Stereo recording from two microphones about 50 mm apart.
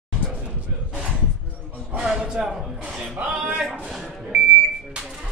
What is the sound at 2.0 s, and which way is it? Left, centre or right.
Speech, centre.